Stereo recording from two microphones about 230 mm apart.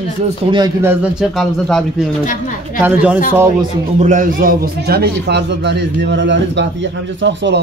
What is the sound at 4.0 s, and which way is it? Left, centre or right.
Speech, right.